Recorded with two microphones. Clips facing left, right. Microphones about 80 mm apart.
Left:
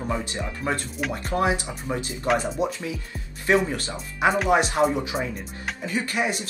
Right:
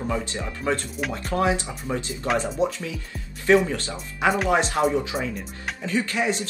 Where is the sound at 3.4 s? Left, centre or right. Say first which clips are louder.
Right 3 dB; left.